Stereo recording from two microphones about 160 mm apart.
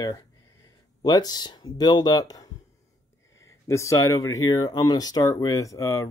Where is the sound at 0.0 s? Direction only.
20° left (ahead or behind).